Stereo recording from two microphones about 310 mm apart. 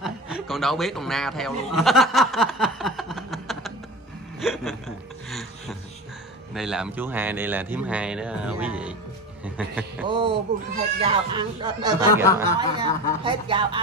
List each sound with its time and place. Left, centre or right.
0.0 s speech: centre
2.6 s chuckle: centre
4.4 s hiccup: centre
6.5 s a man's voice: centre
10.0 s speech: centre